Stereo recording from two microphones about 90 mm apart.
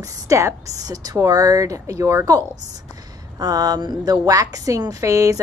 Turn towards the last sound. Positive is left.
turn(degrees=-40)  # may be behind; listen again after turning